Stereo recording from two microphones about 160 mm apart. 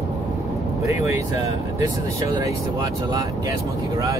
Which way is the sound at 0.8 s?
20° right (ahead or behind).